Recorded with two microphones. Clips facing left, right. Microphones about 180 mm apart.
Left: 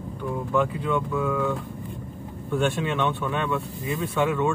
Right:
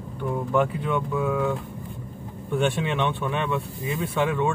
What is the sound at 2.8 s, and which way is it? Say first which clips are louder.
Speech: even; 15° right (ahead or behind).